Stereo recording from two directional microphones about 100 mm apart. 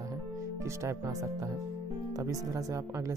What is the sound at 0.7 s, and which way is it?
Speech, 30° right (ahead or behind).